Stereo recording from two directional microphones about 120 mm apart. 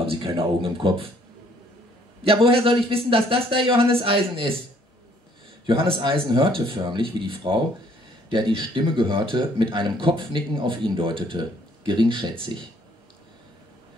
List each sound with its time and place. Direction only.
0.4 s speech: 45° right (ahead or behind)
2.2 s speech: 50° right (ahead or behind)
5.7 s speech: 45° right (ahead or behind)